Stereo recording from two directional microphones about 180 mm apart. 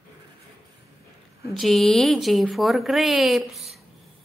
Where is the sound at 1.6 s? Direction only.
Centre (ahead or behind).